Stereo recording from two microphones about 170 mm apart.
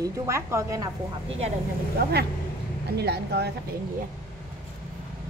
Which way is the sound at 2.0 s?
60° right (ahead or behind).